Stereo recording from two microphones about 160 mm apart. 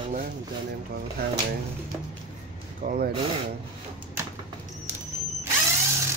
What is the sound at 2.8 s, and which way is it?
Speech, 55° right (ahead or behind).